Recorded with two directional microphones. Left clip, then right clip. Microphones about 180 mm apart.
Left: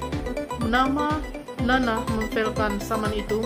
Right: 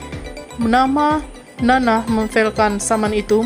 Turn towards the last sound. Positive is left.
turn(degrees=-40)  # may be behind; listen again after turning